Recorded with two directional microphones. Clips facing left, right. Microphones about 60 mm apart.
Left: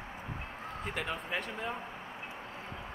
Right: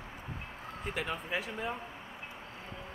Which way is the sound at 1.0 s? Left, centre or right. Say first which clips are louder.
Right 1 dB; centre.